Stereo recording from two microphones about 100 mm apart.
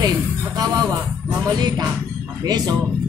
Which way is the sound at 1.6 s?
40° right (ahead or behind).